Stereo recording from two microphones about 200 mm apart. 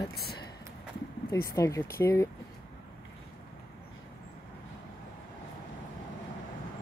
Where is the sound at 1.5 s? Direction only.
15° left (ahead or behind).